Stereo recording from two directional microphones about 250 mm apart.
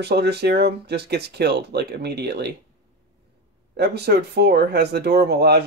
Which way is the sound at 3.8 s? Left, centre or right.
Right.